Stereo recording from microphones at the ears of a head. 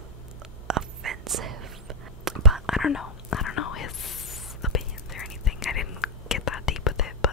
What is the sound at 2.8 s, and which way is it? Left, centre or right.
Whispering, left.